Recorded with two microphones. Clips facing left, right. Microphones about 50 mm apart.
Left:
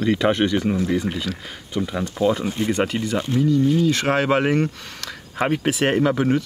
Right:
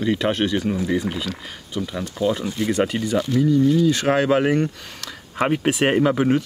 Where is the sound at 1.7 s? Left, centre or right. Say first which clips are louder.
Left 3 dB; centre.